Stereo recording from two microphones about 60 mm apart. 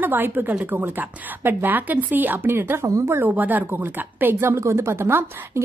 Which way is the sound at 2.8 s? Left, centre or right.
Right.